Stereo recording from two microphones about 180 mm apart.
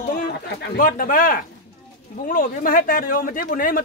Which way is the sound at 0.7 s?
50° left (ahead or behind).